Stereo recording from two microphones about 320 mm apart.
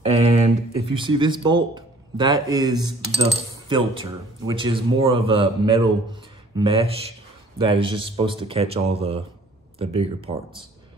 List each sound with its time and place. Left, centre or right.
0.0 s a man's voice: centre